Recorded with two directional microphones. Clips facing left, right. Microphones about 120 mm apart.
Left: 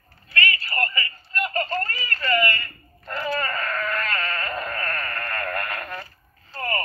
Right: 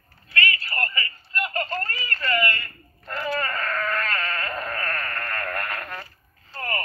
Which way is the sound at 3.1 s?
5° left (ahead or behind).